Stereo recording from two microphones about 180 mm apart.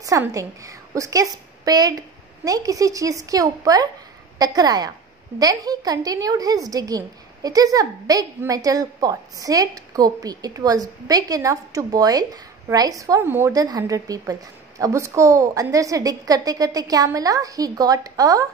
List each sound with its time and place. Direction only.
0.0 s a woman's voice: 20° right (ahead or behind)